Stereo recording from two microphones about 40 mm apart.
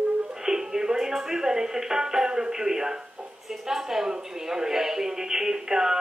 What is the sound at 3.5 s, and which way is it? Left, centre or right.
A woman's voice, centre.